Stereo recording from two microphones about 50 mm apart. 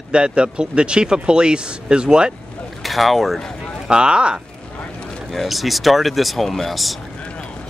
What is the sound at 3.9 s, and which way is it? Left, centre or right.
Speech, centre.